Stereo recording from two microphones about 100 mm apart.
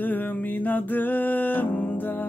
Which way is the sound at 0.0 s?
15° left (ahead or behind).